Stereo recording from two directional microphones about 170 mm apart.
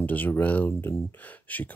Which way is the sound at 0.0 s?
10° left (ahead or behind).